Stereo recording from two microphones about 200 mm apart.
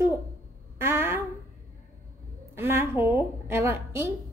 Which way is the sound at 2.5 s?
10° right (ahead or behind).